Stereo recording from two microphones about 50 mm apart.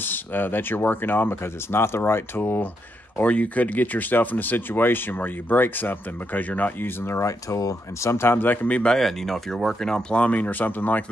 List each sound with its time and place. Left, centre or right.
0.0 s speech: left
3.2 s speech: left
6.9 s speech: left
7.2 s speech: left
8.6 s speech: left
8.9 s speech: centre; by 11.1 s left